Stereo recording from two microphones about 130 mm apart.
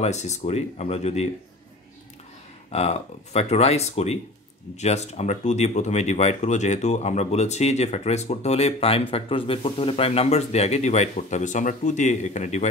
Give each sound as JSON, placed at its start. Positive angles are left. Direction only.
{"t": 0.0, "sound": "speech", "side_deg": 60}
{"t": 2.7, "sound": "speech", "side_deg": 55}